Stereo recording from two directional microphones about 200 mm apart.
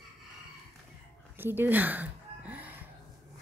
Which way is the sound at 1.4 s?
10° right (ahead or behind).